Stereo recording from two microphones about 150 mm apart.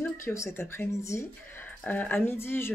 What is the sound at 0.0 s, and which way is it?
Speech, 20° left (ahead or behind).